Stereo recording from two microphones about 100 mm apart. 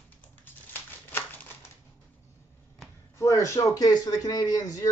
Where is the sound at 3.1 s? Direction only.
30° left (ahead or behind).